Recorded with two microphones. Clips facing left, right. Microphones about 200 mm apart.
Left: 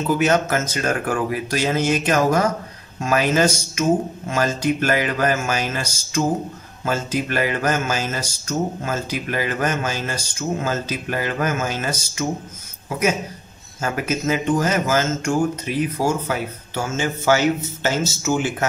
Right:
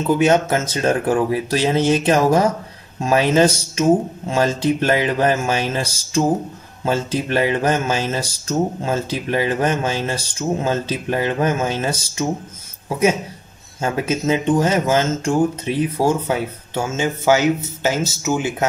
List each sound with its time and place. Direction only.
0.2 s speech: 25° right (ahead or behind)
13.7 s speech: 25° right (ahead or behind)
16.7 s speech: 20° right (ahead or behind)